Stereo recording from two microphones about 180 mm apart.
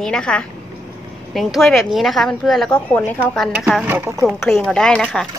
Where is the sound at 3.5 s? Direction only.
5° right (ahead or behind).